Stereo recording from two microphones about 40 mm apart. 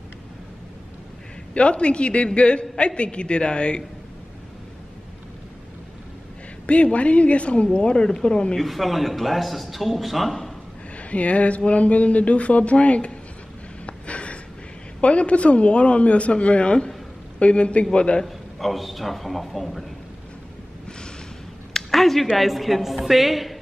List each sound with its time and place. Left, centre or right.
1.5 s a woman's voice: left
6.6 s a woman's voice: left
8.6 s speech: centre
11.0 s speech: left
13.8 s a sound: left
15.0 s a woman's voice: left
18.2 s speech: centre
21.7 s a sound: centre
22.4 s speech: centre